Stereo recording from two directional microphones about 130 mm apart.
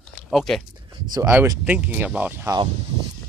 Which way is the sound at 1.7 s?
10° right (ahead or behind).